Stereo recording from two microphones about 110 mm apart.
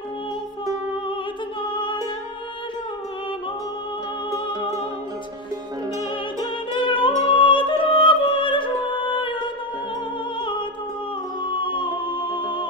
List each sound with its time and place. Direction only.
1.7 s music: 50° left (ahead or behind)
6.4 s music: 50° left (ahead or behind)
11.4 s music: 50° left (ahead or behind)